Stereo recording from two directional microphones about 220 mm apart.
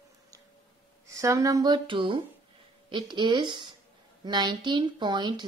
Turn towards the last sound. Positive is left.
turn(degrees=-20)  # may be behind; listen again after turning